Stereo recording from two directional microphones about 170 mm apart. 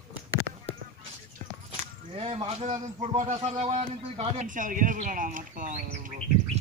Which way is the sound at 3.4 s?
40° right (ahead or behind).